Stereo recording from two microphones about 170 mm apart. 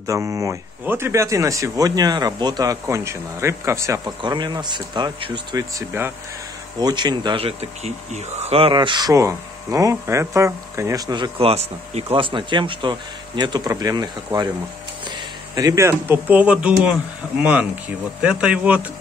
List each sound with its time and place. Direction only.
0.0 s speech: 20° right (ahead or behind)